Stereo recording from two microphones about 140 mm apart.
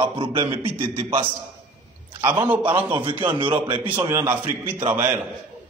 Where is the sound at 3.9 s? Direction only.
25° right (ahead or behind).